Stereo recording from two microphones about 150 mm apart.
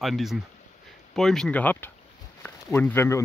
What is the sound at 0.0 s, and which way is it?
Speech, centre (ahead or behind).